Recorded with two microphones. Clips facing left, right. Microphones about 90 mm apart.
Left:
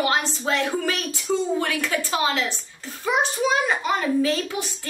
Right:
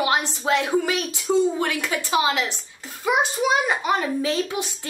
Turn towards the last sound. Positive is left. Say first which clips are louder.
# even
turn(degrees=-20)  # may be behind; listen again after turning